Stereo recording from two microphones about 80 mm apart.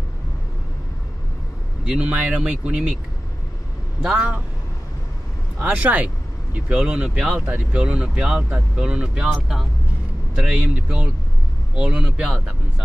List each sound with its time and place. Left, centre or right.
1.9 s speech: centre
4.0 s speech: centre
5.6 s speech: right